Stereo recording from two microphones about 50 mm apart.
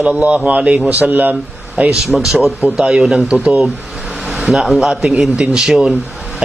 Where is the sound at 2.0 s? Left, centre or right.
Centre.